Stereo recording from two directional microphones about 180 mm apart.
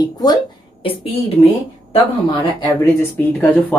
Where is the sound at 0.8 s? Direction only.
30° left (ahead or behind).